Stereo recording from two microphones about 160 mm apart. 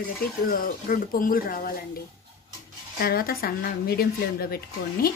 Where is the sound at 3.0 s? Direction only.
70° left (ahead or behind).